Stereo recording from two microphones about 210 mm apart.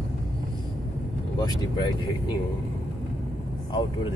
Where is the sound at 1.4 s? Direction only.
20° left (ahead or behind).